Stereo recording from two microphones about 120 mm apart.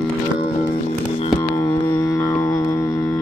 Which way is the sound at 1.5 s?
30° left (ahead or behind).